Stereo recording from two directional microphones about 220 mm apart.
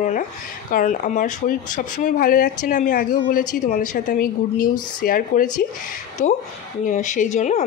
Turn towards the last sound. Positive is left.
turn(degrees=35)  # may be behind; listen again after turning